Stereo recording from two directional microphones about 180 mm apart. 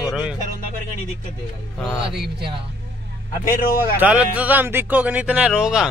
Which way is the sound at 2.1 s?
65° right (ahead or behind).